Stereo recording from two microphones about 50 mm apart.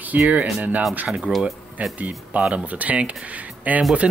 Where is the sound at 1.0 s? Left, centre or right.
Centre.